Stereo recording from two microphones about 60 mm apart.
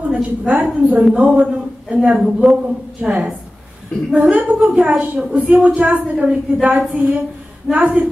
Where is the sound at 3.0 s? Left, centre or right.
Centre.